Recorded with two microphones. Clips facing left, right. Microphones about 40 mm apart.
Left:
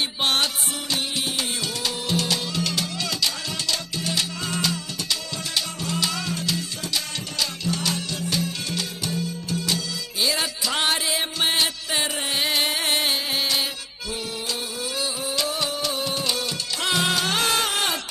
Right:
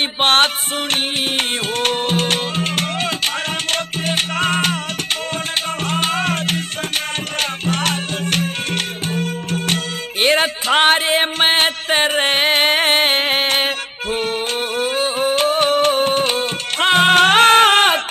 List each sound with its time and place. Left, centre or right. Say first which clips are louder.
0.2 s music: right 10 dB; right
5.9 s music: right 8 dB; right
10.2 s a sound: right 10 dB; right
14.8 s music: right 13 dB; right